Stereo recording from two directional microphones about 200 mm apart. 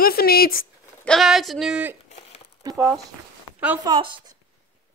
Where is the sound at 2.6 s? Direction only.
20° right (ahead or behind).